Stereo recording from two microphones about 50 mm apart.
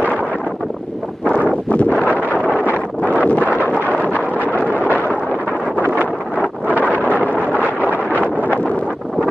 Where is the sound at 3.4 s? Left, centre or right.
Right.